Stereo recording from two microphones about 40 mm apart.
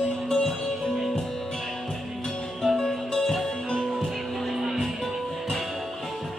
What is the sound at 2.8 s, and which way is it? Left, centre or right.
Music, centre.